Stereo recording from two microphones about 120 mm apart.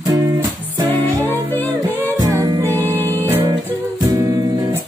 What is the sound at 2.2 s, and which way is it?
Music, 30° right (ahead or behind).